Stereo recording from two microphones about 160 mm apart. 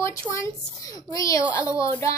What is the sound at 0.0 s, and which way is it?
Child singing, 20° left (ahead or behind).